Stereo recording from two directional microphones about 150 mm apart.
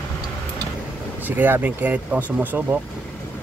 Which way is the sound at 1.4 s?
10° right (ahead or behind).